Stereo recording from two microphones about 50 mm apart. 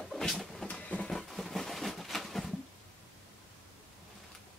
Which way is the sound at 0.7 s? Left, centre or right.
Left.